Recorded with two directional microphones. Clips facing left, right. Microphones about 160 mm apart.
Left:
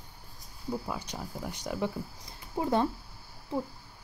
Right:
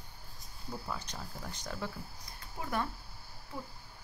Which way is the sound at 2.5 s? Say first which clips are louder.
Left 9 dB; 25° left (ahead or behind).